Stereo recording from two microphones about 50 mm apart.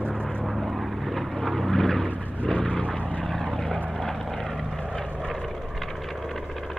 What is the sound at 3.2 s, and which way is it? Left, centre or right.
Vehicle, centre.